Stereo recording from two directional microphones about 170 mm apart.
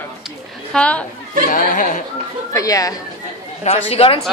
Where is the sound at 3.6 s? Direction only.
40° left (ahead or behind).